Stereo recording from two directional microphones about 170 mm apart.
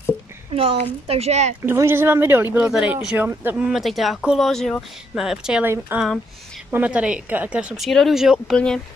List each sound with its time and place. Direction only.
0.5 s speech: 35° right (ahead or behind)
1.6 s speech: 15° right (ahead or behind); by 8.8 s 5° left (ahead or behind)